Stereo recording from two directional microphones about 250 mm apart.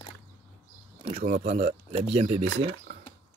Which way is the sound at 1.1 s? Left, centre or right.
Right.